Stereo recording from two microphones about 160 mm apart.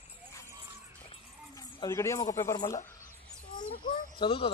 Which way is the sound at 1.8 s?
15° left (ahead or behind).